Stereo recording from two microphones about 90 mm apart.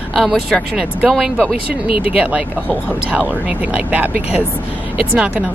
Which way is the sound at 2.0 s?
15° right (ahead or behind).